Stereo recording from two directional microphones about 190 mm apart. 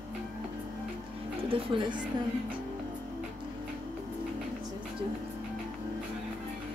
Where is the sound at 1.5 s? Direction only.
25° right (ahead or behind).